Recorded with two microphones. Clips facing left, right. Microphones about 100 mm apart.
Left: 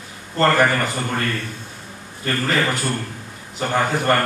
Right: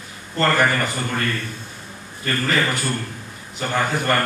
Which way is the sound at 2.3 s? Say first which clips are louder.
Left 1 dB; 30° left (ahead or behind).